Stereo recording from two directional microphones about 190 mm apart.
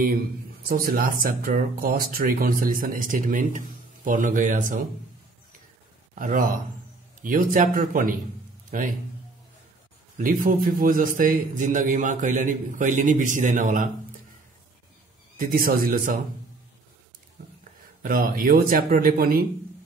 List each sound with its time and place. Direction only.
0.7 s speech: 50° right (ahead or behind)
6.1 s speech: 45° right (ahead or behind)
10.1 s speech: 45° right (ahead or behind)
15.3 s speech: 50° right (ahead or behind)
18.0 s speech: 50° right (ahead or behind)